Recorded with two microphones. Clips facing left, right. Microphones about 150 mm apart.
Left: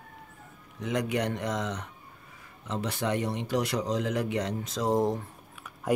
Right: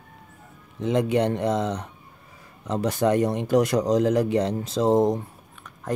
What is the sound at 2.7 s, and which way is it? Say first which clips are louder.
A man's voice: right 8 dB; 40° right (ahead or behind).